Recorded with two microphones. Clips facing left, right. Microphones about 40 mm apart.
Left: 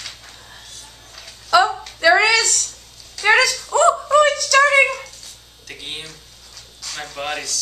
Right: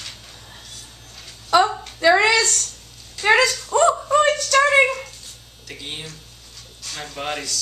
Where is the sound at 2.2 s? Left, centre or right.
Right.